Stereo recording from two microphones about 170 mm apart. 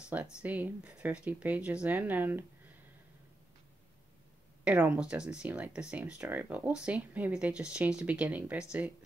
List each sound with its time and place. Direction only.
0.1 s speech: 10° right (ahead or behind)
4.6 s speech: 5° right (ahead or behind)